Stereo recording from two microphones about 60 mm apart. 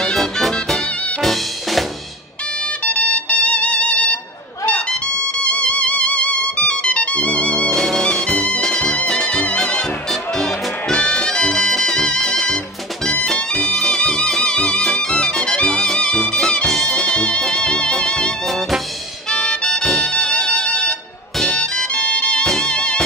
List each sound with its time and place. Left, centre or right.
0.0 s music: centre
2.8 s music: left
7.7 s music: centre
19.3 s music: centre